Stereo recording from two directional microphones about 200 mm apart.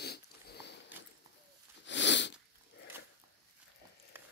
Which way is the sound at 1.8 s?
60° left (ahead or behind).